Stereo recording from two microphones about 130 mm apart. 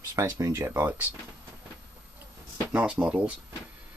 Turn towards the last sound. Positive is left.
turn(degrees=-10)  # may be behind; listen again after turning